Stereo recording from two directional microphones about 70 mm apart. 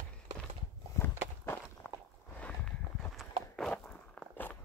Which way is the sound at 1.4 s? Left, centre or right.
Left.